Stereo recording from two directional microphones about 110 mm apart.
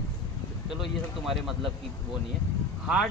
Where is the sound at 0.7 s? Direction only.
Centre (ahead or behind).